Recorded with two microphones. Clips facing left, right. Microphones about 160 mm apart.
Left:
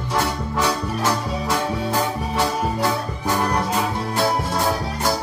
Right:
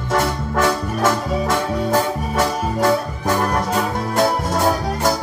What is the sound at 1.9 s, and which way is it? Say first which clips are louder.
Music: right 4 dB; 45° right (ahead or behind).